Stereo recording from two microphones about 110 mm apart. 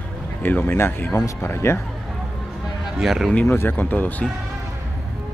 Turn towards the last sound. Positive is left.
turn(degrees=15)  # may be behind; listen again after turning